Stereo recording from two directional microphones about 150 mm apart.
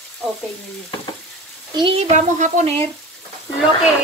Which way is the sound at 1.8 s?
40° right (ahead or behind).